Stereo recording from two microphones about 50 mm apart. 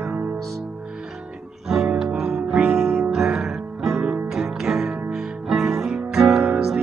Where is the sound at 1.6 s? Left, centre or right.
Centre.